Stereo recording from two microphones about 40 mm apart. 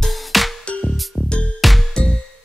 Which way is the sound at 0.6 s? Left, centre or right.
Left.